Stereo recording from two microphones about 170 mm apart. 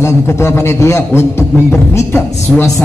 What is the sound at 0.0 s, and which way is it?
A man's voice, 15° left (ahead or behind).